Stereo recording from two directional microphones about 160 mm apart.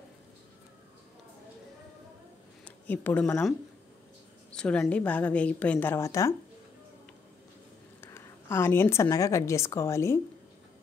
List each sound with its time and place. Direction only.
2.6 s a woman's voice: 10° left (ahead or behind)
8.0 s speech: 15° left (ahead or behind)